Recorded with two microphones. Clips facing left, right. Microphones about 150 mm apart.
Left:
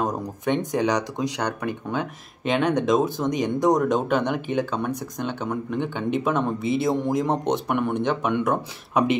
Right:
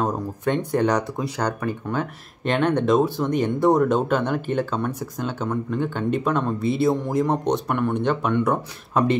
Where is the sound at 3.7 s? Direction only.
5° right (ahead or behind).